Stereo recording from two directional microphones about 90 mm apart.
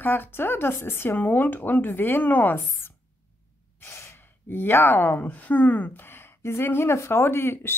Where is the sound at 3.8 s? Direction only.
30° left (ahead or behind).